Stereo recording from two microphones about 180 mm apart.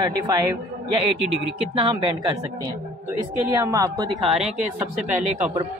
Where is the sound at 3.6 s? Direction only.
20° right (ahead or behind).